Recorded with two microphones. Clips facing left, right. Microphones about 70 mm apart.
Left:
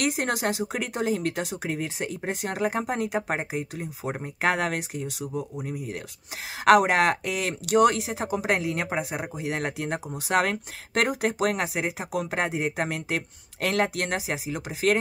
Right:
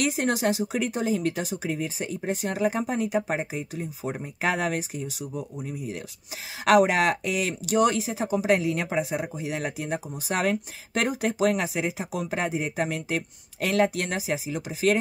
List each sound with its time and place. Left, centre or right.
0.0 s speech: left